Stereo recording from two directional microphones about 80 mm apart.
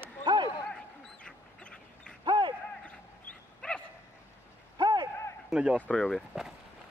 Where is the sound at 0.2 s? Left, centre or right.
Right.